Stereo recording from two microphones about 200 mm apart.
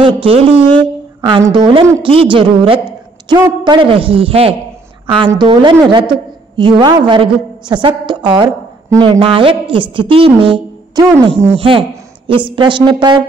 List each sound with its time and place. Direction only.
0.0 s a woman's voice: 25° right (ahead or behind)